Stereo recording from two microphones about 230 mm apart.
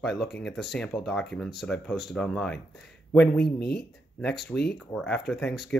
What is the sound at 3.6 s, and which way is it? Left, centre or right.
Speech, left.